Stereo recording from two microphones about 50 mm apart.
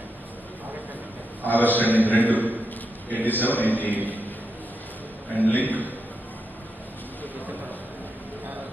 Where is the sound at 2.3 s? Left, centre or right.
Right.